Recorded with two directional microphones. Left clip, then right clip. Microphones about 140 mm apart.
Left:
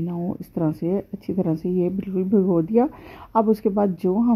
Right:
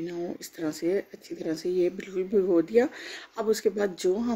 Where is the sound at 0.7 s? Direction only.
20° left (ahead or behind).